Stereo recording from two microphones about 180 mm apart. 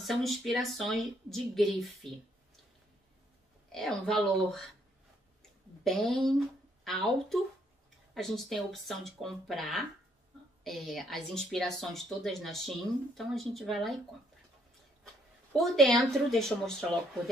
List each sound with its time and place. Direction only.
0.0 s a woman's voice: centre (ahead or behind)
3.7 s a woman's voice: 5° left (ahead or behind)
5.9 s a woman's voice: centre (ahead or behind)
15.5 s a woman's voice: centre (ahead or behind)